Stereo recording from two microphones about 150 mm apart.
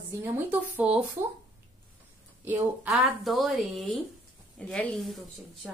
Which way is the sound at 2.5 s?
10° right (ahead or behind).